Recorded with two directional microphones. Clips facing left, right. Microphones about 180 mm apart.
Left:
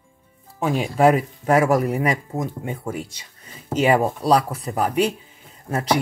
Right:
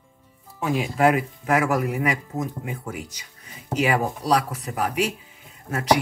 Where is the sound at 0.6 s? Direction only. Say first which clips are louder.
Left 3 dB; 30° left (ahead or behind).